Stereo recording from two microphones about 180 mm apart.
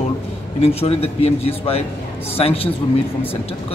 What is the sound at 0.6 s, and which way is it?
Speech, 35° left (ahead or behind).